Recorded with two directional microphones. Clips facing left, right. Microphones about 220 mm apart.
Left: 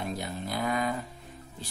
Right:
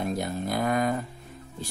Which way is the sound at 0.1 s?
50° right (ahead or behind).